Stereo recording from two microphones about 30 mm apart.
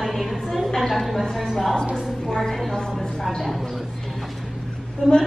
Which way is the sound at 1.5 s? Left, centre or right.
Centre.